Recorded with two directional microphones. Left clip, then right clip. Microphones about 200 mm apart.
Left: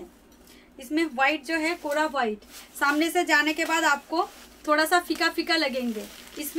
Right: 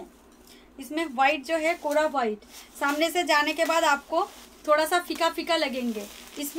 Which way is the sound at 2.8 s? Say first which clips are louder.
Left 1 dB; 20° left (ahead or behind).